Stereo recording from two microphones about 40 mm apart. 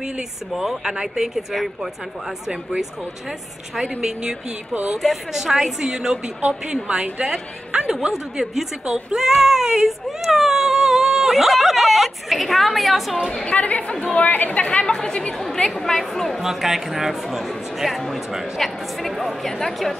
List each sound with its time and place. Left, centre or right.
0.2 s a woman's voice: centre
4.9 s a woman's voice: centre; by 7.2 s right
8.1 s a woman's voice: centre
13.5 s speech: left
14.9 s a woman's voice: centre
16.4 s speech: centre